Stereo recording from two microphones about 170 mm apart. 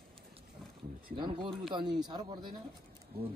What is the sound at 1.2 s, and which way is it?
A man's voice, 30° right (ahead or behind).